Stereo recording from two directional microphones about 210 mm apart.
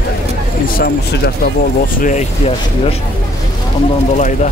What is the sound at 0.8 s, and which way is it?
Speech, 45° left (ahead or behind).